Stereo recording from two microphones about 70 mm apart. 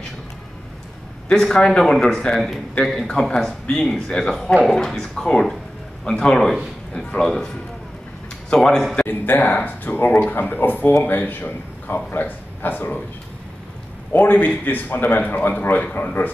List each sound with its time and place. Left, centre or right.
1.3 s speech: centre
8.5 s speech: centre
9.0 s a man's voice: left
14.1 s a man's voice: left